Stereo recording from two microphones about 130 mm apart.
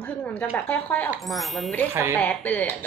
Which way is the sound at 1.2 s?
Centre (ahead or behind).